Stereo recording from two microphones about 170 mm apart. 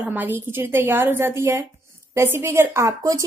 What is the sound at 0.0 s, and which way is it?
A woman's voice, 10° right (ahead or behind).